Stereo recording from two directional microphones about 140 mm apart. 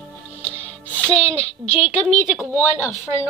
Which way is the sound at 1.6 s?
45° left (ahead or behind).